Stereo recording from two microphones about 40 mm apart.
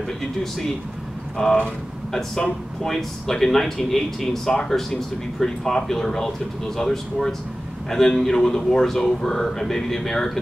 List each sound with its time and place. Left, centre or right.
1.4 s speech: centre
2.8 s speech: centre